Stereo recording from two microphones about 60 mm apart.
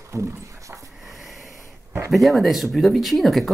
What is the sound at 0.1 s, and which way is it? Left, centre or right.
Speech, right.